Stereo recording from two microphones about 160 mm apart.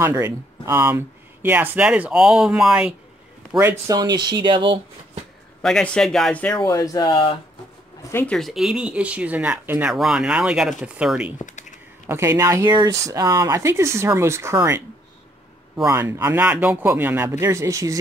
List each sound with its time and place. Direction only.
0.0 s speech: 20° right (ahead or behind)
3.8 s speech: 25° right (ahead or behind)
5.6 s speech: 5° left (ahead or behind)
6.5 s speech: 20° left (ahead or behind)
8.1 s speech: 10° left (ahead or behind); by 11.3 s 5° right (ahead or behind)
11.3 s speech: 50° left (ahead or behind)
12.1 s speech: 20° right (ahead or behind)
15.9 s speech: 15° right (ahead or behind)